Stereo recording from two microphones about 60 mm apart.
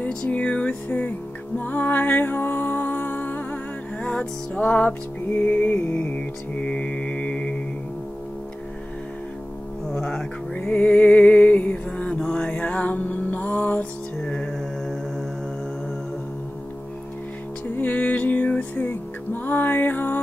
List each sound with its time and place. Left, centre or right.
0.1 s music: centre
4.0 s music: centre
5.3 s mantra: left
9.9 s speech: centre
10.5 s music: left
14.2 s mantra: centre
17.7 s music: left